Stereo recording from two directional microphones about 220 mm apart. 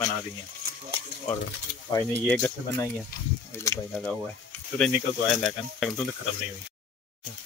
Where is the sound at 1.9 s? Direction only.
10° left (ahead or behind).